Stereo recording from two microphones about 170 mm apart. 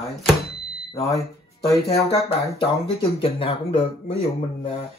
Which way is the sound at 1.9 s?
35° left (ahead or behind).